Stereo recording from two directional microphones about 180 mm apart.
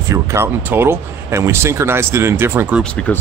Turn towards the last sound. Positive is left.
turn(degrees=5)  # may be behind; listen again after turning